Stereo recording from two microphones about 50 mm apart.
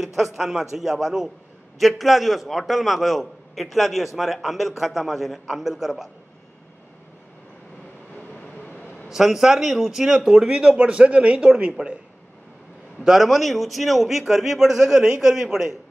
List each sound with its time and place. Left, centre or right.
0.0 s a man's voice: centre
9.1 s a man's voice: centre; by 11.7 s right
13.0 s a man's voice: centre